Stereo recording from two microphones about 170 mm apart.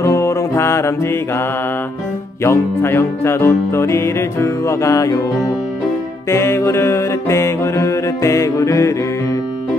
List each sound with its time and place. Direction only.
0.0 s music: 15° left (ahead or behind)
2.4 s music: 15° left (ahead or behind)
6.2 s music: 15° left (ahead or behind)